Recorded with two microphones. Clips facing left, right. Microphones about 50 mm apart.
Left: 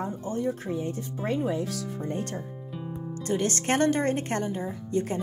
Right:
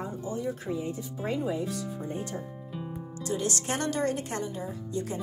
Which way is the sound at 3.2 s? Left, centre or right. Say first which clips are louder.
Left 4 dB; left.